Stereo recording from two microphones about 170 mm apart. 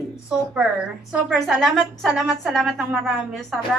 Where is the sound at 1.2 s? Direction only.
Centre (ahead or behind).